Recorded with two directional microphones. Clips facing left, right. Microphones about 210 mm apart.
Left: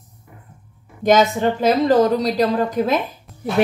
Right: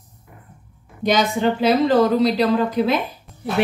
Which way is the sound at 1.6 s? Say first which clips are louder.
Left 1 dB; 45° left (ahead or behind).